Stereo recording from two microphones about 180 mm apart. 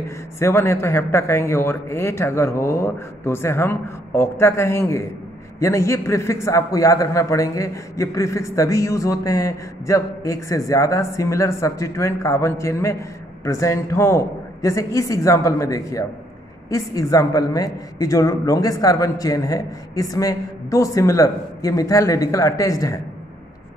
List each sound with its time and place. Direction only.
0.4 s a man's voice: 15° left (ahead or behind)